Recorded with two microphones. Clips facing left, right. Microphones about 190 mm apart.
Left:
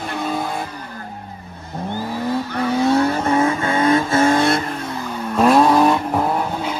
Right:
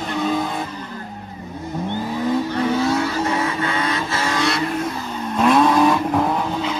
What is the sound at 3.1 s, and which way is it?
Vehicle, 50° left (ahead or behind).